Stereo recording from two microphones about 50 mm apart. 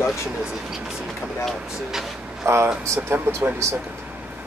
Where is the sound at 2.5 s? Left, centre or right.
Right.